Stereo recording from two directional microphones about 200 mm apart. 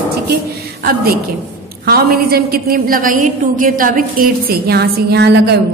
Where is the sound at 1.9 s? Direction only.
50° right (ahead or behind).